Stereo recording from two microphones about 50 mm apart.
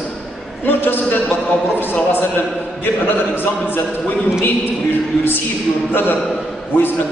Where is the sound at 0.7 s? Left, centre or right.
Left.